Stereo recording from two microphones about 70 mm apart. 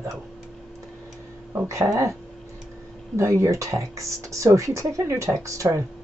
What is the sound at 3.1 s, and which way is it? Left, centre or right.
Speech, right.